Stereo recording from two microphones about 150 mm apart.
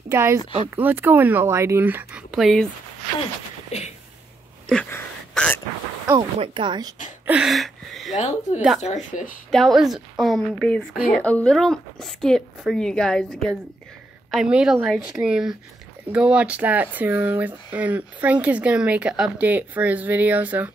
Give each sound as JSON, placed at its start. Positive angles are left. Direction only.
{"t": 0.1, "sound": "speech", "side_deg": -20}
{"t": 4.6, "sound": "a sound", "side_deg": 10}
{"t": 6.1, "sound": "speech", "side_deg": -35}
{"t": 7.2, "sound": "speech", "side_deg": -5}
{"t": 8.2, "sound": "speech", "side_deg": 50}
{"t": 8.5, "sound": "speech", "side_deg": 0}
{"t": 8.8, "sound": "speech", "side_deg": 55}
{"t": 9.5, "sound": "speech", "side_deg": 5}